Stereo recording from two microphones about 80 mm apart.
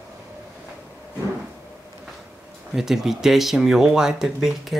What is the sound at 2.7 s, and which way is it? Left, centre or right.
Speech, centre.